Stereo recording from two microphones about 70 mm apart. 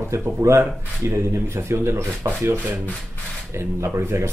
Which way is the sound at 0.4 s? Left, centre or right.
Right.